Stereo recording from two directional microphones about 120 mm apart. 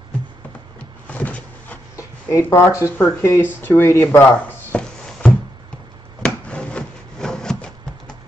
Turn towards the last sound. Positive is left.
turn(degrees=5)  # may be behind; listen again after turning